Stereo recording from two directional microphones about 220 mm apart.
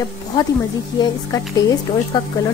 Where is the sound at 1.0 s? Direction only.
20° left (ahead or behind).